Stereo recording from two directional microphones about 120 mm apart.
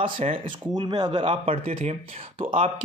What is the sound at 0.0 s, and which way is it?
Speech, 45° right (ahead or behind).